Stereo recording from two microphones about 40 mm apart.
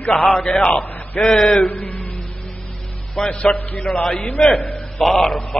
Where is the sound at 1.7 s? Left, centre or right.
Left.